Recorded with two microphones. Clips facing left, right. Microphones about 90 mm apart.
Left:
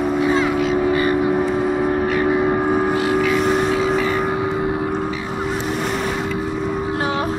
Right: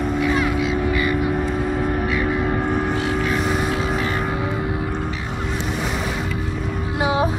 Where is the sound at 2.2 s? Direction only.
20° left (ahead or behind); by 4.3 s centre (ahead or behind).